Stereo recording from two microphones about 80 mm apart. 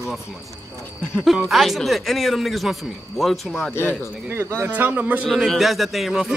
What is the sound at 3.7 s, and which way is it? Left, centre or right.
Speech, left.